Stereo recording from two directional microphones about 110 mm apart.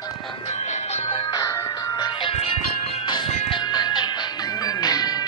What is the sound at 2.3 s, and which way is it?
Music, 70° left (ahead or behind).